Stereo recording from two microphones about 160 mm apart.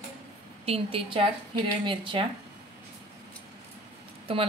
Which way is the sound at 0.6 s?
35° right (ahead or behind).